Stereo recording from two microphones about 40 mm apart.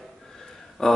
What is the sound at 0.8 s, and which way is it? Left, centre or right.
Speech, centre.